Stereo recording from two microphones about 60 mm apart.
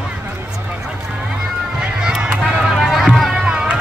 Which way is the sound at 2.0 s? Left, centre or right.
Centre.